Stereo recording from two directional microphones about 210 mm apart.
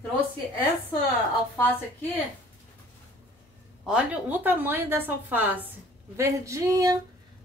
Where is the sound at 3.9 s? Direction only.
5° right (ahead or behind).